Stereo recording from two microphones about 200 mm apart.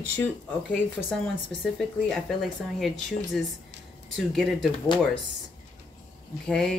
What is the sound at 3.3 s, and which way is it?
Speech, centre (ahead or behind).